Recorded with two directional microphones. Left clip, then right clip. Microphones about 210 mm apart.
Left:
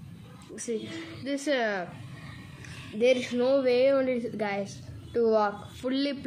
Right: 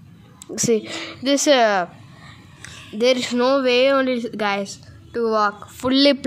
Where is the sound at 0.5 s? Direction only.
55° right (ahead or behind).